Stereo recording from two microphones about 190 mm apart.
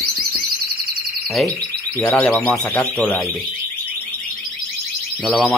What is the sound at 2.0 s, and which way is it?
Speech, 5° left (ahead or behind).